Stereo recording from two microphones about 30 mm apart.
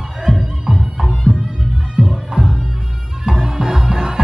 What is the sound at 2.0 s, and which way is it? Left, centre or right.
Music, right.